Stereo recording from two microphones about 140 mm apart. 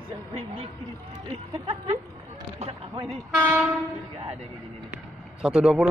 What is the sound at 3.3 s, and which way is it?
Train, 15° right (ahead or behind).